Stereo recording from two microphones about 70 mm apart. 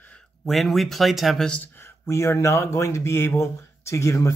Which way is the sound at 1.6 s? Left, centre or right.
Left.